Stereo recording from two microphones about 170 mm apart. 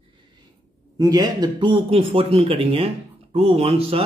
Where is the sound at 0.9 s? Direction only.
25° right (ahead or behind).